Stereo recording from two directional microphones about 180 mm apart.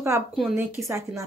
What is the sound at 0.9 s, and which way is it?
Speech, 15° right (ahead or behind).